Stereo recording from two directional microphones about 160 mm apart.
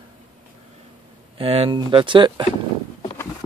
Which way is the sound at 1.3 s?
35° right (ahead or behind).